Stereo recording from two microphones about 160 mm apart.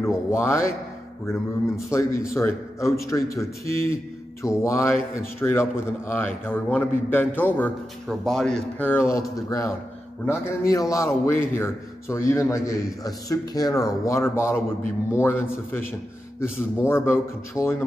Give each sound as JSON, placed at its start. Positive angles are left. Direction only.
{"t": 0.3, "sound": "speech", "side_deg": 15}
{"t": 1.9, "sound": "a man's voice", "side_deg": 20}